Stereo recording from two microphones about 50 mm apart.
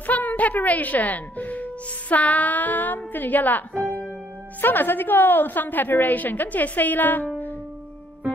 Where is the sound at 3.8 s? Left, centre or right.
Left.